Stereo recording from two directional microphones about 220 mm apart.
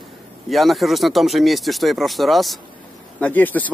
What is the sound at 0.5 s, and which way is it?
Speech, centre (ahead or behind).